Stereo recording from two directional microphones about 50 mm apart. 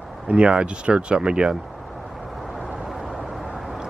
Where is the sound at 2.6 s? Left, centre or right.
Centre.